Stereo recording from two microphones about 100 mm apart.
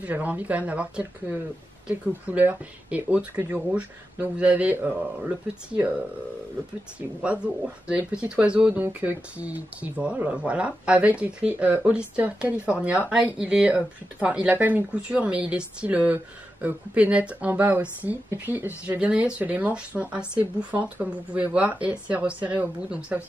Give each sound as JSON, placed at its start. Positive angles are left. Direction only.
{"t": 0.0, "sound": "speech", "side_deg": -15}
{"t": 7.0, "sound": "speech", "side_deg": -10}
{"t": 11.5, "sound": "speech", "side_deg": -25}